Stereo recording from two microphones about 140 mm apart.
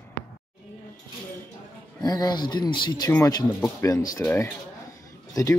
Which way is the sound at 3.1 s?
20° left (ahead or behind).